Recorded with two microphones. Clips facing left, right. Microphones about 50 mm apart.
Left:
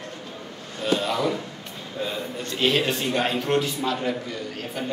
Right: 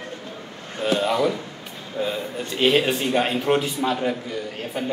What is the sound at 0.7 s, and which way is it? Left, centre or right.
A man's voice, right.